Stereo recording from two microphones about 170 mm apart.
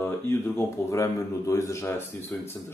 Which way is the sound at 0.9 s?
15° left (ahead or behind).